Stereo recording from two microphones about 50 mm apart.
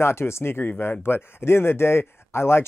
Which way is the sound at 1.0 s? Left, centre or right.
Left.